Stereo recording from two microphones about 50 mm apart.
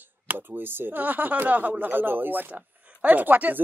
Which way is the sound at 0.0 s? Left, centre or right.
Right.